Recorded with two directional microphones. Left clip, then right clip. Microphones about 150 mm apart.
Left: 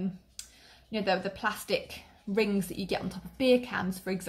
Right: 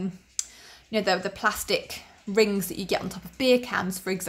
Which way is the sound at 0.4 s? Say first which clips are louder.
Right 14 dB; 25° right (ahead or behind).